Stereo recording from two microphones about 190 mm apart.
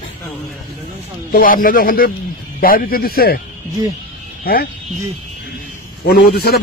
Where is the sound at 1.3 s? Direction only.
50° left (ahead or behind).